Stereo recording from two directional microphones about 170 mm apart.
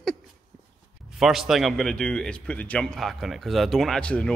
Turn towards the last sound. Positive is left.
turn(degrees=5)  # may be behind; listen again after turning